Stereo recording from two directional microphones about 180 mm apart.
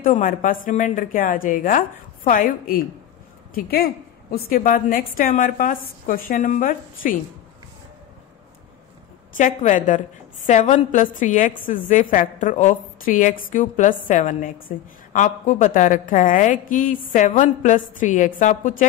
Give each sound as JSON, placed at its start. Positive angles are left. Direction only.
{"t": 0.0, "sound": "a woman's voice", "side_deg": 50}
{"t": 9.4, "sound": "a woman's voice", "side_deg": 45}